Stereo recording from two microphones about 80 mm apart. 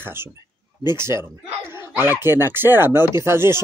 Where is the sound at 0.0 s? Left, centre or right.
Right.